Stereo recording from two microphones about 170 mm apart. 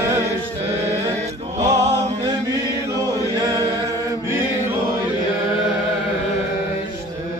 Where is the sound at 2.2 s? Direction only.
20° right (ahead or behind).